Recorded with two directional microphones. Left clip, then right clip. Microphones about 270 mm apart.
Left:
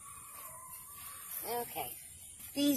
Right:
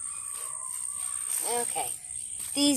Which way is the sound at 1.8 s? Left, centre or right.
Right.